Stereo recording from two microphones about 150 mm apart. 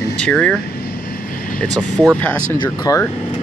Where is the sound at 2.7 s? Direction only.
25° left (ahead or behind).